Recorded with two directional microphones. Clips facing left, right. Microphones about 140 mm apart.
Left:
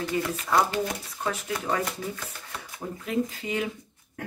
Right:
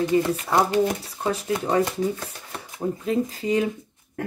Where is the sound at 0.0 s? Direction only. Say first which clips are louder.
Right 8 dB; 20° right (ahead or behind).